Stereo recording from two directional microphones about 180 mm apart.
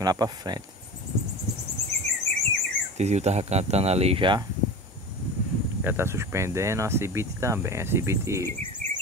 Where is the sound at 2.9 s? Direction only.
40° right (ahead or behind).